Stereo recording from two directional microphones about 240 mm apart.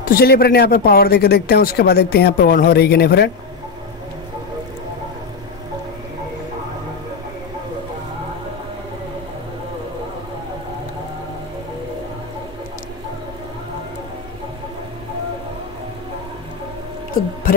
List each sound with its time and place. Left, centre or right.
0.0 s speech: left